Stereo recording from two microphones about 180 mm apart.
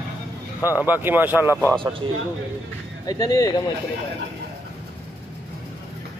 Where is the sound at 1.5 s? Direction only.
10° left (ahead or behind).